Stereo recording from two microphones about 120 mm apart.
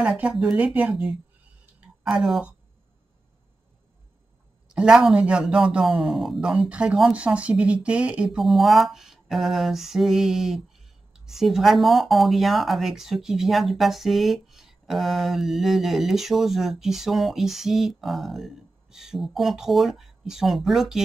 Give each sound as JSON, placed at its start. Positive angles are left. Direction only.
{"t": 0.0, "sound": "speech", "side_deg": -10}
{"t": 1.8, "sound": "a sound", "side_deg": -5}
{"t": 4.6, "sound": "speech", "side_deg": -5}